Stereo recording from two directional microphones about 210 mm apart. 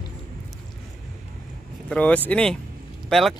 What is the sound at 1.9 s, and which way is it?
Speech, 5° left (ahead or behind).